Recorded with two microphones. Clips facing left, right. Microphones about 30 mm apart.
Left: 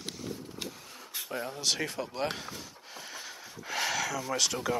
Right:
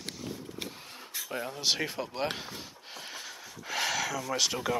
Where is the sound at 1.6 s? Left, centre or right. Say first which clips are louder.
Right 2 dB; centre.